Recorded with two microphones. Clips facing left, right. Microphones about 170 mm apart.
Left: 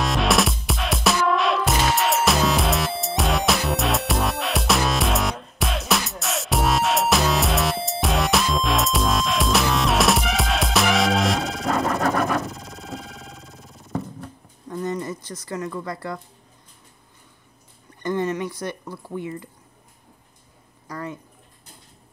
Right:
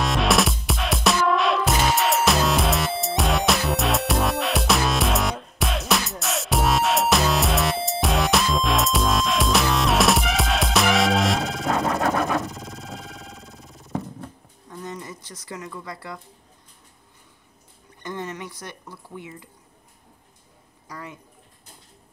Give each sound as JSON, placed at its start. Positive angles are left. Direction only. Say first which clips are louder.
{"t": 0.0, "sound": "music", "louder": "even", "side_deg": 0}
{"t": 14.8, "sound": "a sound", "louder": "left 8 dB", "side_deg": 60}
{"t": 15.4, "sound": "speech", "louder": "left 6 dB", "side_deg": -10}